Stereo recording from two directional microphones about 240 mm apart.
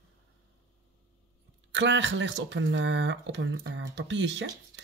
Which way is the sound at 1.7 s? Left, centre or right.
Right.